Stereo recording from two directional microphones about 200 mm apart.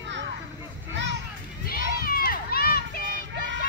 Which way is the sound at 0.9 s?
60° right (ahead or behind).